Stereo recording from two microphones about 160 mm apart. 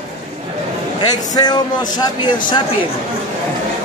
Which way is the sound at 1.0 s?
25° left (ahead or behind).